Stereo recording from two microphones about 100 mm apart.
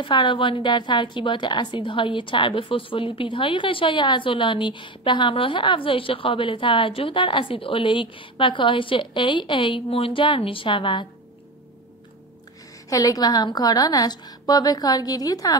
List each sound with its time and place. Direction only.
0.0 s a woman's voice: 50° left (ahead or behind)
12.9 s a woman's voice: 35° left (ahead or behind)